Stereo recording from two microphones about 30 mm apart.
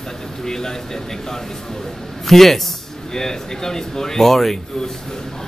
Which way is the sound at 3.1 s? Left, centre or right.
Centre.